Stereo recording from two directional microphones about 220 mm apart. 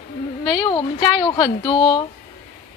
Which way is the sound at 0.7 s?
20° left (ahead or behind).